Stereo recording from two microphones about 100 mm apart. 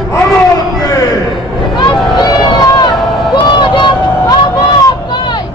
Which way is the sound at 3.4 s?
50° left (ahead or behind).